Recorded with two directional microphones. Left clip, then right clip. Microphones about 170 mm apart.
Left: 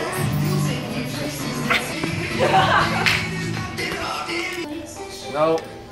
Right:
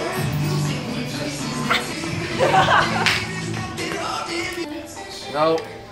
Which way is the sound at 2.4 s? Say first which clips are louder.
Right 1 dB; centre (ahead or behind).